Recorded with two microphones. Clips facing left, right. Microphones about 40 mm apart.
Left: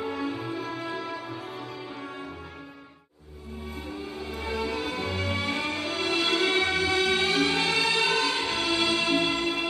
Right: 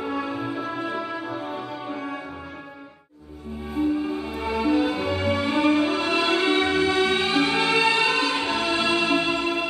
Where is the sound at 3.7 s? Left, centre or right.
Right.